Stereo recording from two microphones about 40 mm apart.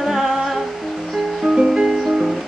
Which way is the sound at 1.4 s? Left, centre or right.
Centre.